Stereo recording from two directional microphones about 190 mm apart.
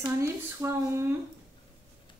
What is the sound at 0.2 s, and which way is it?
Speech, 10° right (ahead or behind).